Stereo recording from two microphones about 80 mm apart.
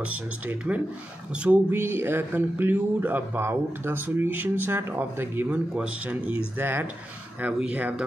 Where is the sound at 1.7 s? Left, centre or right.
Right.